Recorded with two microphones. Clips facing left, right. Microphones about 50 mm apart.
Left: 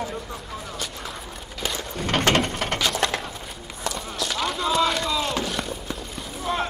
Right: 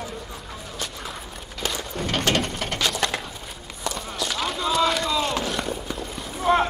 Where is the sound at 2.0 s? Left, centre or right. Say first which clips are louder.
Left 3 dB; left.